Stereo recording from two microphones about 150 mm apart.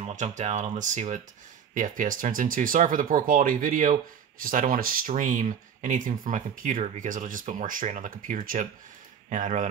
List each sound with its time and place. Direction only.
0.0 s speech: 55° right (ahead or behind)